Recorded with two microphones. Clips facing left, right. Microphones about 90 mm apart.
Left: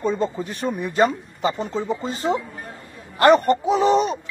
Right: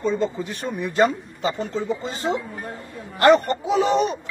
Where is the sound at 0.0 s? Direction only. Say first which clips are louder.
Even; 45° left (ahead or behind).